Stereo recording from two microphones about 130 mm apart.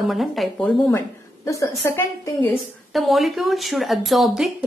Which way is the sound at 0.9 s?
25° left (ahead or behind).